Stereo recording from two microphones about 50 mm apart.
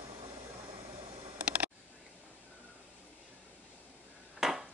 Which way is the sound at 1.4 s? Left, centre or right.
Right.